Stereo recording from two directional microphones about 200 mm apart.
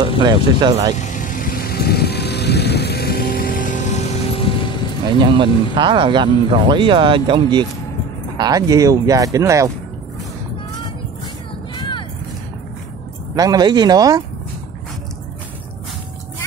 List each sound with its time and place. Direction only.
0.2 s speech: 20° right (ahead or behind)
0.9 s vehicle: 40° left (ahead or behind)
5.0 s speech: 25° right (ahead or behind)
13.3 s speech: 20° right (ahead or behind)